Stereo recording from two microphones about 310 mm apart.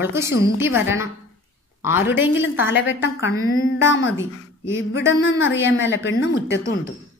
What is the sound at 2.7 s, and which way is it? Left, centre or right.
A woman's voice, left.